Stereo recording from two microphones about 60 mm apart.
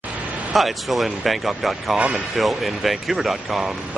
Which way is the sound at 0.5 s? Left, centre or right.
Centre.